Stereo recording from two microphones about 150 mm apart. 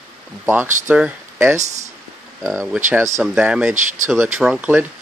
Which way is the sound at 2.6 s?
10° right (ahead or behind).